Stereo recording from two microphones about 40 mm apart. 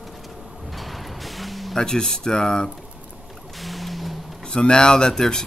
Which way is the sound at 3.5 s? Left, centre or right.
Centre.